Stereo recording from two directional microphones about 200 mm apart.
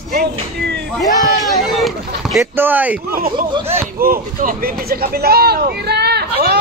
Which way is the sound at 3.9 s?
45° right (ahead or behind).